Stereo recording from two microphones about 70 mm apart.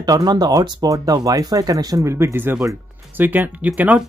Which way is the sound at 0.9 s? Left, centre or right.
Right.